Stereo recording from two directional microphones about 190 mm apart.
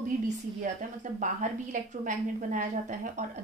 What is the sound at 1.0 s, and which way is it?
A woman's voice, 40° right (ahead or behind).